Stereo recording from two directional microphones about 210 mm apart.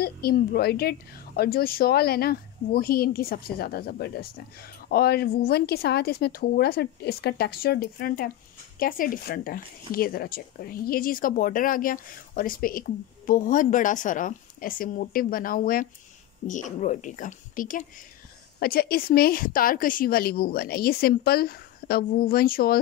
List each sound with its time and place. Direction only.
0.0 s a woman's voice: 45° left (ahead or behind)